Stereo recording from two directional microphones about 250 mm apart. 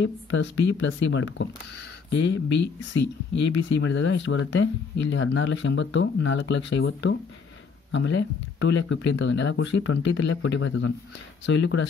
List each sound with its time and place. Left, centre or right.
0.0 s speech: left